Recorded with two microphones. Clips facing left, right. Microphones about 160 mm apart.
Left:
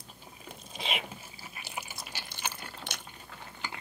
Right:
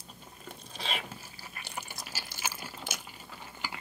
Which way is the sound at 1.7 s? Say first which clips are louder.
Even; centre (ahead or behind).